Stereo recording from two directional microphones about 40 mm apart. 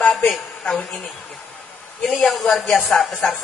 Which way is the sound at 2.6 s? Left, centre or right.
Left.